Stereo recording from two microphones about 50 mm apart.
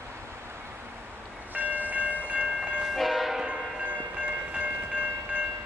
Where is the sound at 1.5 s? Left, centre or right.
Right.